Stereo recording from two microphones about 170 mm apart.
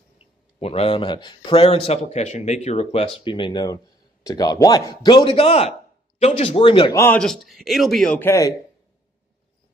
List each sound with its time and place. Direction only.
0.6 s speech: 35° left (ahead or behind)
6.9 s speech: 15° left (ahead or behind)
7.2 s speech: centre (ahead or behind); by 8.5 s 15° left (ahead or behind)